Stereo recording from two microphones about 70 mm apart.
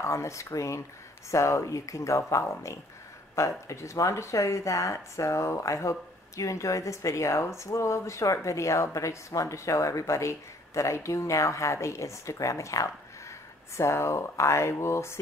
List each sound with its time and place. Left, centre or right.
0.0 s speech: left